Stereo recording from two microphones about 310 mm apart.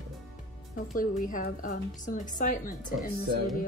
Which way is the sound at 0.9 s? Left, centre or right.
Left.